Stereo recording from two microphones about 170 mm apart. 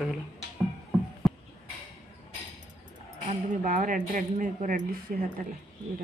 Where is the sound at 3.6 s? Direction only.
50° right (ahead or behind).